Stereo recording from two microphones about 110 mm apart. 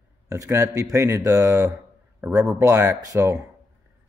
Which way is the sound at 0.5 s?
30° right (ahead or behind).